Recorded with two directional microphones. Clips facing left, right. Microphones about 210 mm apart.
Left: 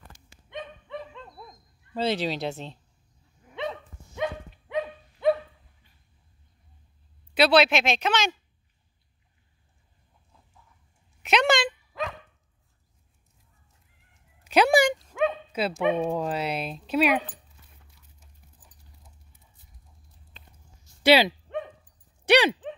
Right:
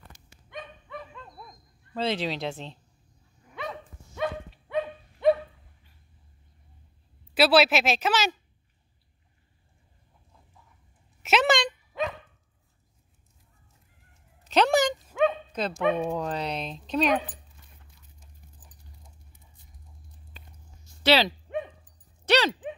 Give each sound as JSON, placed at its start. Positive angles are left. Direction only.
{"t": 0.5, "sound": "dog", "side_deg": 25}
{"t": 2.0, "sound": "speech", "side_deg": 0}
{"t": 3.5, "sound": "dog", "side_deg": 20}
{"t": 5.2, "sound": "dog", "side_deg": 0}
{"t": 7.3, "sound": "speech", "side_deg": -5}
{"t": 11.2, "sound": "dog", "side_deg": 0}
{"t": 14.4, "sound": "a sound", "side_deg": 10}
{"t": 15.0, "sound": "dog", "side_deg": -5}
{"t": 15.2, "sound": "bow-wow", "side_deg": 5}
{"t": 16.1, "sound": "speech", "side_deg": 10}
{"t": 21.0, "sound": "speech", "side_deg": 10}
{"t": 22.2, "sound": "dog", "side_deg": 15}